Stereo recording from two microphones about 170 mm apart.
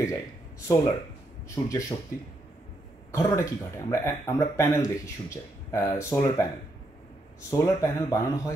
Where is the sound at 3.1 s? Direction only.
15° left (ahead or behind).